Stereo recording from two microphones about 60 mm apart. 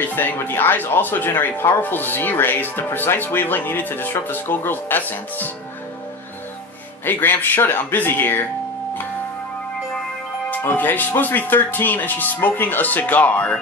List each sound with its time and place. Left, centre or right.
0.0 s speech: left
7.1 s speech: left
10.6 s speech: left